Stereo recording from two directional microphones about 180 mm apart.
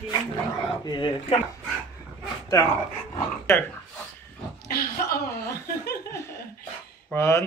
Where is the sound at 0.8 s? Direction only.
25° left (ahead or behind).